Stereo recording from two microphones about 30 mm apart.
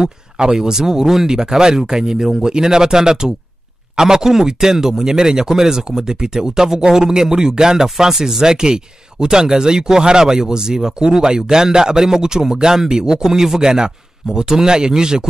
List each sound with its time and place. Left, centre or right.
0.0 s speech: right